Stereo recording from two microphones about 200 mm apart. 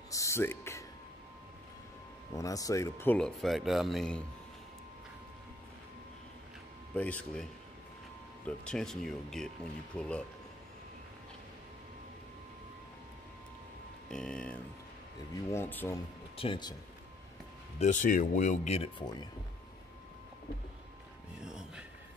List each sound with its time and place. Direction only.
0.1 s a sound: 15° left (ahead or behind)
2.3 s speech: 15° left (ahead or behind); by 4.2 s centre (ahead or behind)
7.0 s speech: 5° left (ahead or behind)
8.5 s speech: 5° left (ahead or behind)
14.1 s speech: 5° left (ahead or behind)
16.3 s speech: 25° left (ahead or behind)
17.7 s speech: 40° left (ahead or behind)